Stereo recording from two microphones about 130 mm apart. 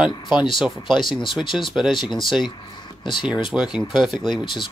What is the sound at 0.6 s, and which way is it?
Speech, centre (ahead or behind).